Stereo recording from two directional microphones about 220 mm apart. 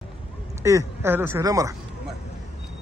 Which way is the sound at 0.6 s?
15° right (ahead or behind).